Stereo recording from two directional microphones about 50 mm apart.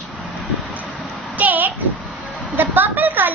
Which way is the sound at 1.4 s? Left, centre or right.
Right.